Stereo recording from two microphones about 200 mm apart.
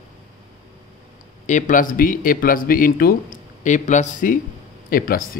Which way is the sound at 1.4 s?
40° left (ahead or behind).